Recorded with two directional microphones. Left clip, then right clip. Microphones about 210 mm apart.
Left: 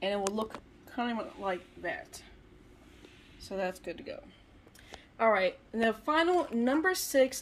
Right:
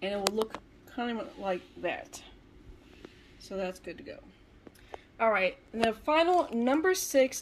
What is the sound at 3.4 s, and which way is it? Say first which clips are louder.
A woman's voice: left 1 dB; 5° left (ahead or behind).